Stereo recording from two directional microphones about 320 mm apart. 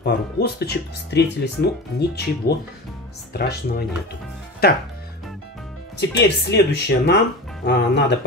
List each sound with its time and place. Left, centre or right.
0.0 s speech: left
5.9 s speech: left